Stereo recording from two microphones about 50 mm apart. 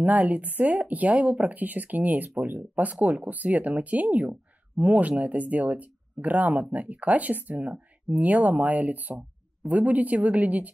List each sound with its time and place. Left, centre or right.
0.0 s speech: right